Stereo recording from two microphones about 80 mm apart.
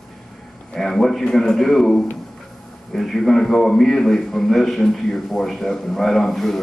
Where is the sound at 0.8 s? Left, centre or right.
Centre.